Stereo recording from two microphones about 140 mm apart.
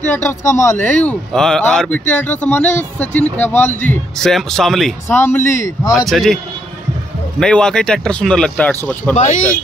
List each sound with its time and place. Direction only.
0.0 s a man's voice: 15° left (ahead or behind)
4.2 s speech: 5° left (ahead or behind)
5.0 s a man's voice: 15° left (ahead or behind)
5.9 s speech: centre (ahead or behind)
9.1 s speech: 55° left (ahead or behind)